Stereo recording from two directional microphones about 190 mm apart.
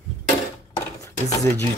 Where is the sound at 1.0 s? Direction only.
15° left (ahead or behind).